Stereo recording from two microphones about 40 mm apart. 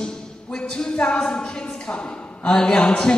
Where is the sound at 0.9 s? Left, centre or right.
Left.